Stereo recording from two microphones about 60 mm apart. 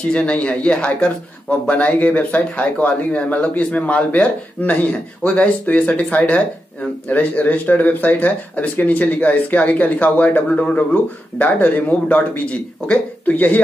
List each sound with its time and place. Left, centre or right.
0.0 s speech: centre